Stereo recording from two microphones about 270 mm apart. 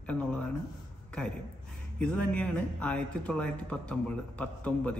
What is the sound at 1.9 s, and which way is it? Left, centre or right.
Speech, centre.